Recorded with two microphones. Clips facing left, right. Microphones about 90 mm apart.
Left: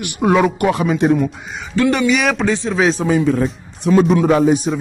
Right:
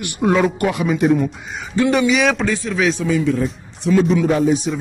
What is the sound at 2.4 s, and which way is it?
Speech, 25° left (ahead or behind).